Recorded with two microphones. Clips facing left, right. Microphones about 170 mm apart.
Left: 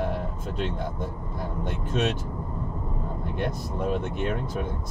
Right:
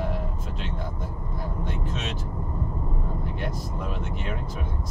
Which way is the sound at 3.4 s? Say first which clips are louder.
Left 4 dB; 55° left (ahead or behind).